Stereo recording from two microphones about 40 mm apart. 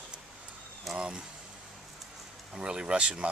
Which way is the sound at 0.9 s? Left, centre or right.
Centre.